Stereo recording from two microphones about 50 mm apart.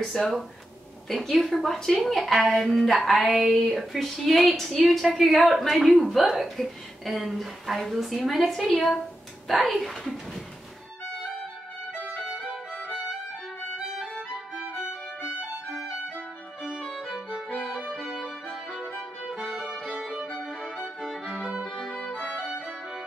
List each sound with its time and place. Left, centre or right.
0.0 s a woman's voice: centre
14.3 s violin: centre
17.9 s music: centre
19.5 s music: centre
21.9 s violin: left